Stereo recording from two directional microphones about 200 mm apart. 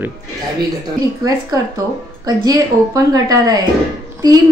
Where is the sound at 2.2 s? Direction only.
15° right (ahead or behind).